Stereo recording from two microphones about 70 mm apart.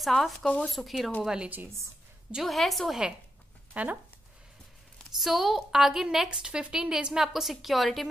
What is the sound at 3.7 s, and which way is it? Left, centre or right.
Speech, right.